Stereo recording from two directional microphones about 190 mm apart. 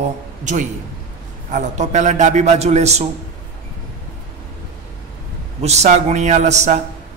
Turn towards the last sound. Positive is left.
turn(degrees=-35)  # may be behind; listen again after turning